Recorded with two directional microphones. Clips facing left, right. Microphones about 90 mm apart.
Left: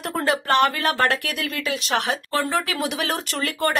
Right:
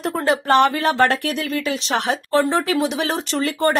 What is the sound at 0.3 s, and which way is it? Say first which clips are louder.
Speech: right 4 dB; 35° right (ahead or behind).